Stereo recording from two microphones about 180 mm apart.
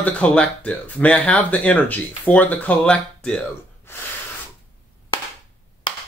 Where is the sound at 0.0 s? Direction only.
5° left (ahead or behind).